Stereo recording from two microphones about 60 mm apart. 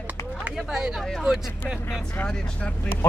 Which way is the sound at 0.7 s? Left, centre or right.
Centre.